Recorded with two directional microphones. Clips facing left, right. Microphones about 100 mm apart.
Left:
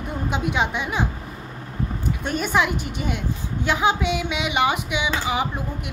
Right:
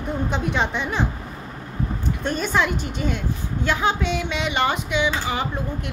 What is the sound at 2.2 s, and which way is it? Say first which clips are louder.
A woman's voice: even; 10° left (ahead or behind).